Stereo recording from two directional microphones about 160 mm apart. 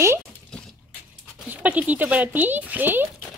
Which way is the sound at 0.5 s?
5° left (ahead or behind).